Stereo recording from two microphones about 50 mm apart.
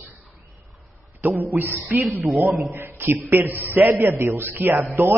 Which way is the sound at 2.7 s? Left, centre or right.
Right.